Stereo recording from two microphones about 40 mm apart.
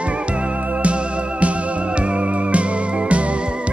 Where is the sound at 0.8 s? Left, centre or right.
Right.